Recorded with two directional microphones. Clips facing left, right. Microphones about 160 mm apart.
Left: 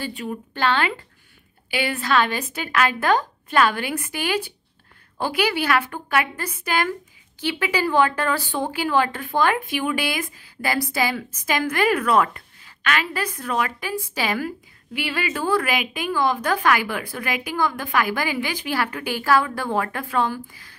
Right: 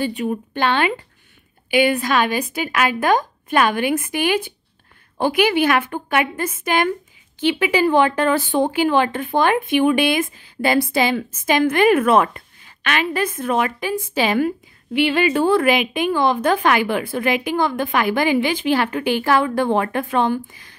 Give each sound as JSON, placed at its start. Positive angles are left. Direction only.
{"t": 0.0, "sound": "a woman's voice", "side_deg": -20}